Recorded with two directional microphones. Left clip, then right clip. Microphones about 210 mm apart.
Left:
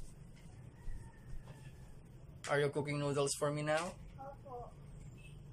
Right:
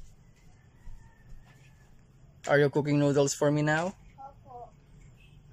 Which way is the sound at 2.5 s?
35° right (ahead or behind).